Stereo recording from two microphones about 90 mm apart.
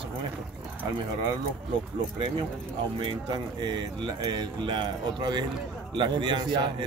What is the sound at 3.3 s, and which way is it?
Speech, 55° right (ahead or behind).